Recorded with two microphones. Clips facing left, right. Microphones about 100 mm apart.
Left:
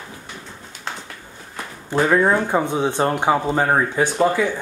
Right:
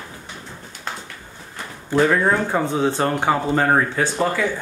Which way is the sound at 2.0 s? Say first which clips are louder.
Left 1 dB; 15° left (ahead or behind).